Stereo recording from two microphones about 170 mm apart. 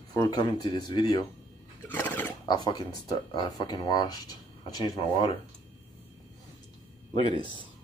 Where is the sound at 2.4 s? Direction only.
25° left (ahead or behind).